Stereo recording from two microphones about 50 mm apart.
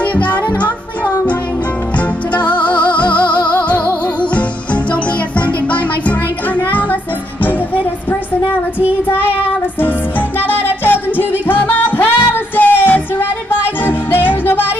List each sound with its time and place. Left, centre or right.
0.0 s music: left